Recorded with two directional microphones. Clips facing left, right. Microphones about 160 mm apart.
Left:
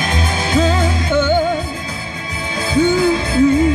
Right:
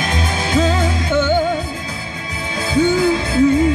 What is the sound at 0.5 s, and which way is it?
Music, 35° left (ahead or behind).